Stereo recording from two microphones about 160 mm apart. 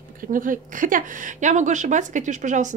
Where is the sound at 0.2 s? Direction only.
60° right (ahead or behind).